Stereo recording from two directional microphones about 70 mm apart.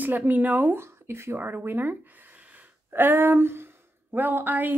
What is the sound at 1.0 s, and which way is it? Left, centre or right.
Speech, right.